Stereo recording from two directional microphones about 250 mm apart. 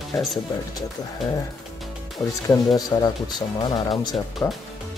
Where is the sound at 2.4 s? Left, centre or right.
Centre.